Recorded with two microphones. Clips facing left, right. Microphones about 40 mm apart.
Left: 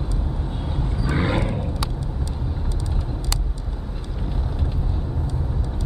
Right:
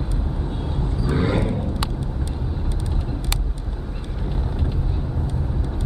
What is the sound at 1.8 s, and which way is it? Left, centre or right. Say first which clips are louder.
Vehicle: right 1 dB; right.